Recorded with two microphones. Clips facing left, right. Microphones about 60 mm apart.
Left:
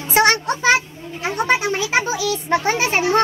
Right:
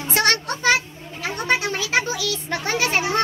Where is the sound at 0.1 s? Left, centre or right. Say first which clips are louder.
Left 5 dB; left.